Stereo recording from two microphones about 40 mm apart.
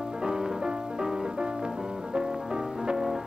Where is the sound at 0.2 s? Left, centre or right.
Centre.